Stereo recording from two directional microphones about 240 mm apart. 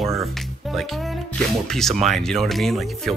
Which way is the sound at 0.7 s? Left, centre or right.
Centre.